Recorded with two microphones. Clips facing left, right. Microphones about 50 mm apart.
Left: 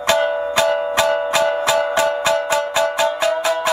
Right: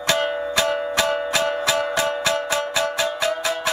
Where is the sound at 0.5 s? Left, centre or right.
Left.